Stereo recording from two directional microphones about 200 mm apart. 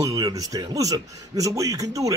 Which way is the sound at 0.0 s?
15° right (ahead or behind).